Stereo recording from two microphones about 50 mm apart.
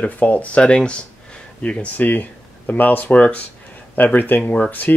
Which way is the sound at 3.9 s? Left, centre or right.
Left.